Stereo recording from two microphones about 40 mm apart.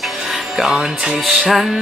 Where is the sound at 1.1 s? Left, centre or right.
Centre.